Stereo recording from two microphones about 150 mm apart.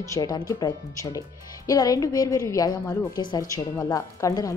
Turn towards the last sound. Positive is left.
turn(degrees=20)  # may be behind; listen again after turning